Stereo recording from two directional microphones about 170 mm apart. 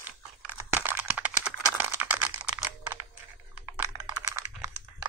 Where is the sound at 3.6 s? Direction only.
20° right (ahead or behind).